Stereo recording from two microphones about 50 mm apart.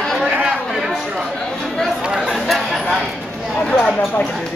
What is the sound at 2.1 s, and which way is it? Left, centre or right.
Chatter, centre.